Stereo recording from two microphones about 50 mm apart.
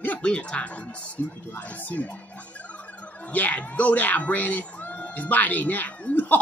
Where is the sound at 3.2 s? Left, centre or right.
Left.